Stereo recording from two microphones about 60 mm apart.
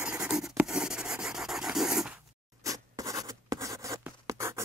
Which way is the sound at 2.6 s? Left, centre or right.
Right.